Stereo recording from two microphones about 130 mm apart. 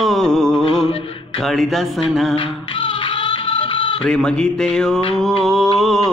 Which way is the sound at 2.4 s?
40° left (ahead or behind).